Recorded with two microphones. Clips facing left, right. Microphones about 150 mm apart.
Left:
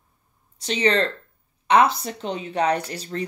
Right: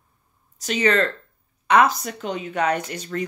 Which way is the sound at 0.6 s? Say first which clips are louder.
Right 1 dB; 30° left (ahead or behind).